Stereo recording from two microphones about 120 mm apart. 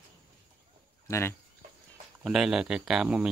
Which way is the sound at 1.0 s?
25° left (ahead or behind).